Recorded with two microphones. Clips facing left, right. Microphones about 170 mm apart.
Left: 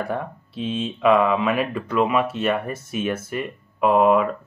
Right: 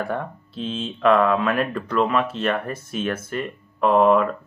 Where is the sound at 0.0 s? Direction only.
Centre (ahead or behind).